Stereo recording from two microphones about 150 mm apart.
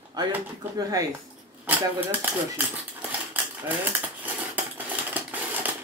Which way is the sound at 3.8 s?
10° right (ahead or behind).